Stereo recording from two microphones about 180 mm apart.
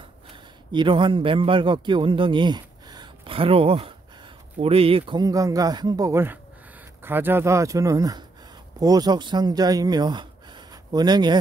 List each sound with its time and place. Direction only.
0.7 s a man's voice: 25° right (ahead or behind)